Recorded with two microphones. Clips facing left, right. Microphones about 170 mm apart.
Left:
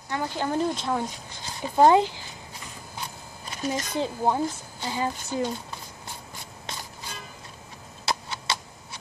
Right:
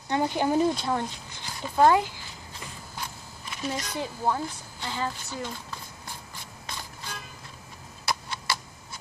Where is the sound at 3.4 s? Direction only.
40° left (ahead or behind).